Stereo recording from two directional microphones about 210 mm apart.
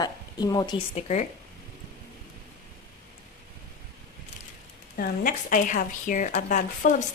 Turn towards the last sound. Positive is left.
turn(degrees=35)  # may be behind; listen again after turning